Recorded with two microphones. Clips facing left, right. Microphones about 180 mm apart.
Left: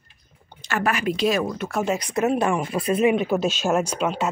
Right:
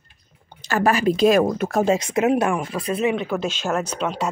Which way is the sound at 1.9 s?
25° right (ahead or behind).